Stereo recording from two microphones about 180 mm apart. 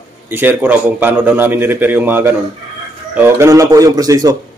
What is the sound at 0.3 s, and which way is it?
A man's voice, 10° right (ahead or behind).